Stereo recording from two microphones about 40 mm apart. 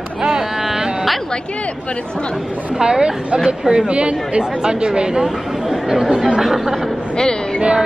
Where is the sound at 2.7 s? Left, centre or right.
Centre.